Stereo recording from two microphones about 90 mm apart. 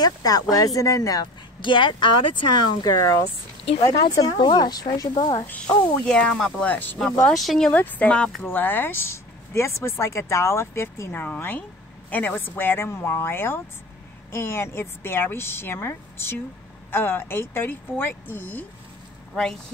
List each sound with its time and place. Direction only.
0.0 s speech: 45° left (ahead or behind)
1.6 s speech: 65° left (ahead or behind)
2.8 s speech: 40° left (ahead or behind)
3.7 s speech: 90° left
4.1 s speech: 50° left (ahead or behind)
5.2 s speech: 60° left (ahead or behind)
5.5 s speech: 10° left (ahead or behind)
6.7 s speech: 20° left (ahead or behind)
7.2 s speech: 5° left (ahead or behind)
7.7 s speech: 15° left (ahead or behind)